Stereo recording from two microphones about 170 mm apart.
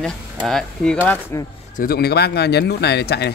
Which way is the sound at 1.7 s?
65° left (ahead or behind).